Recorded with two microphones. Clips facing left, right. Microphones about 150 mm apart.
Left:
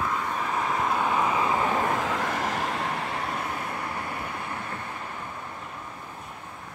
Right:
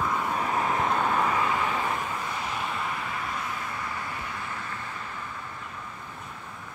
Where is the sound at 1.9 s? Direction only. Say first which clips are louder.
Left 5 dB; 90° left; by 3.4 s 70° left (ahead or behind).